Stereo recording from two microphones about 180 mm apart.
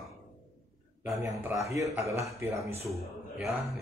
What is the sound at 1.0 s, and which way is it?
Speech, 15° right (ahead or behind).